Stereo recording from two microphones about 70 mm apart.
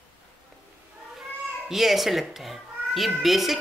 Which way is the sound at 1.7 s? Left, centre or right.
Centre.